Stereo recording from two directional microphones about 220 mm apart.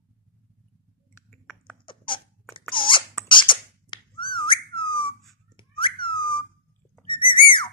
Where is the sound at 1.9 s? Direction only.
20° left (ahead or behind).